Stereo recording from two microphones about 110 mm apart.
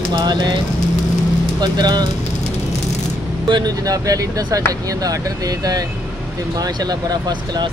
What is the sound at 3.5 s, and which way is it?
Speech, 40° right (ahead or behind).